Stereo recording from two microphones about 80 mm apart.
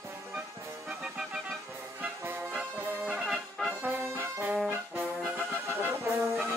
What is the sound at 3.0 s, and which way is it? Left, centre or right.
Music, centre.